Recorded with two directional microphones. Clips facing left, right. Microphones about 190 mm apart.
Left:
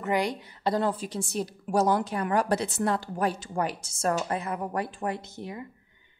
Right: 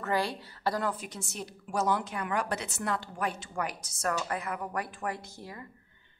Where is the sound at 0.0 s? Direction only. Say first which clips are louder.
Left 3 dB; 15° left (ahead or behind).